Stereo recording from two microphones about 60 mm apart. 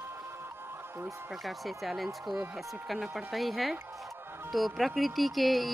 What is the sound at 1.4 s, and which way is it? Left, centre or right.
Speech, centre.